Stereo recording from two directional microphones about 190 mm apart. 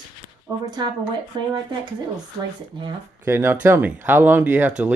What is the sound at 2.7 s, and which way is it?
Speech, 25° right (ahead or behind).